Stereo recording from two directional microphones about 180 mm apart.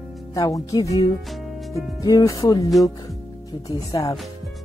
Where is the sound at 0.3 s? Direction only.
20° left (ahead or behind).